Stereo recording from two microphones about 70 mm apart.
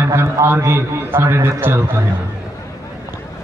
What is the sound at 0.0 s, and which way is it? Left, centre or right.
A man's voice, right.